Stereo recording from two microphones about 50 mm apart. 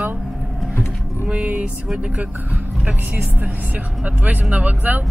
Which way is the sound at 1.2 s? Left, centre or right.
Right.